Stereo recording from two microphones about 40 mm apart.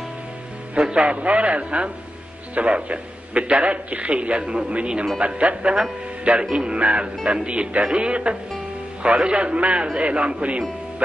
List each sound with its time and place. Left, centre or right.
0.9 s a man's voice: right